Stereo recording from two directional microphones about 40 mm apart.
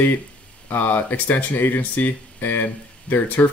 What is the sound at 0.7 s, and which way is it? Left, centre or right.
Speech, left.